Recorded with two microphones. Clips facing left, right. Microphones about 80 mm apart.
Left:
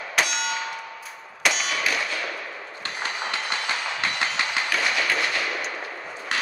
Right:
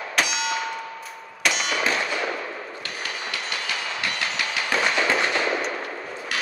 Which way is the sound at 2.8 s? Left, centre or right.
Left.